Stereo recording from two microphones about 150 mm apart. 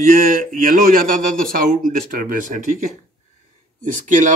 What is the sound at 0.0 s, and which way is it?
Speech, 60° right (ahead or behind).